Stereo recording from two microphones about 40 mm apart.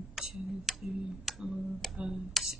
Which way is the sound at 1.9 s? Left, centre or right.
Centre.